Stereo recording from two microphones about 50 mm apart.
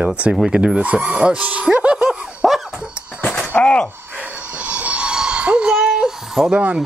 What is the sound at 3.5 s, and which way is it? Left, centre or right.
Speech, left.